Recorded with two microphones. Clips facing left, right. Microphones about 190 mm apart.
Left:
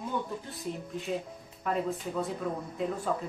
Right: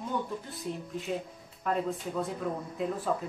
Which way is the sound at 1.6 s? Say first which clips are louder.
Even; centre (ahead or behind).